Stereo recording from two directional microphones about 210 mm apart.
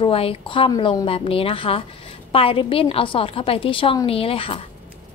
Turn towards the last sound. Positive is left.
turn(degrees=25)  # may be behind; listen again after turning